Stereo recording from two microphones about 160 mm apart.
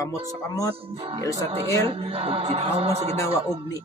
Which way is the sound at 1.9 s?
35° right (ahead or behind).